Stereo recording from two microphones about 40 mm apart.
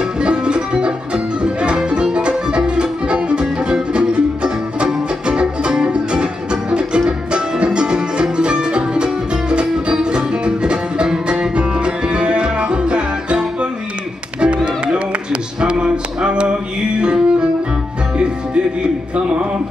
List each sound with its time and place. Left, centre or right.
0.2 s music: right
14.4 s music: right
15.6 s a sound: right
17.0 s music: right